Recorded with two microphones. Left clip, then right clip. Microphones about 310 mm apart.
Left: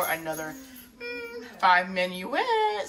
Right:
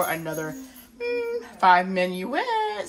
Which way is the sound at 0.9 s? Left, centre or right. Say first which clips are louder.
Right 9 dB; centre.